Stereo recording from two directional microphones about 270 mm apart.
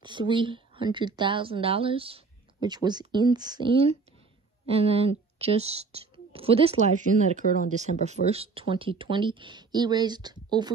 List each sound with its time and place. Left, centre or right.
0.0 s a woman's voice: centre